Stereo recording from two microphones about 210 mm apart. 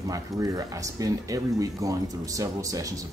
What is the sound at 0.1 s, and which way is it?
Speech, 15° right (ahead or behind).